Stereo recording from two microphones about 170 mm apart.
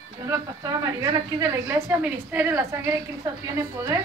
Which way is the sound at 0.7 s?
20° right (ahead or behind).